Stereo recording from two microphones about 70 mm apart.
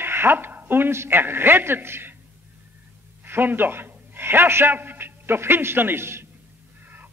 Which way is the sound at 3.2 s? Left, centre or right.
Right.